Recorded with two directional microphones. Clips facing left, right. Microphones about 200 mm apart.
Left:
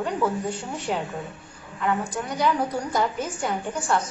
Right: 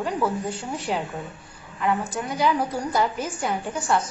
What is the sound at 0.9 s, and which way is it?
A woman's voice, centre (ahead or behind).